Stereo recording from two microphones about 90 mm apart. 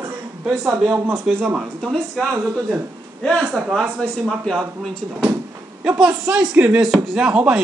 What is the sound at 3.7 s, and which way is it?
Speech, 5° left (ahead or behind).